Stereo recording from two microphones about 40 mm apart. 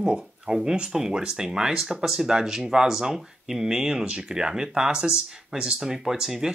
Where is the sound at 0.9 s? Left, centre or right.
Centre.